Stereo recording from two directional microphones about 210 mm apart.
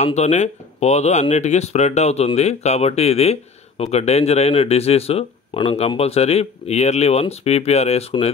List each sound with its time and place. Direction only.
0.0 s speech: 35° left (ahead or behind)